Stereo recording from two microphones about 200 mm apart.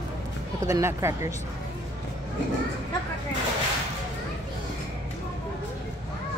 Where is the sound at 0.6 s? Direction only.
15° right (ahead or behind).